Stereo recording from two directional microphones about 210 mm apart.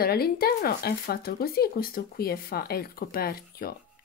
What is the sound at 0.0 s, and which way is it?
Speech, 45° left (ahead or behind).